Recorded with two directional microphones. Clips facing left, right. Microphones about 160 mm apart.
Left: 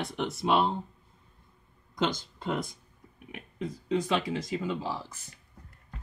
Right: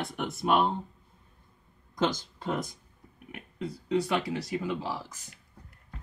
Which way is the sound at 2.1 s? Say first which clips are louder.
Even; 15° right (ahead or behind).